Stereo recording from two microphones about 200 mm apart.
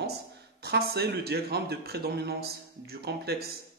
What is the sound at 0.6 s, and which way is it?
Speech, 55° right (ahead or behind).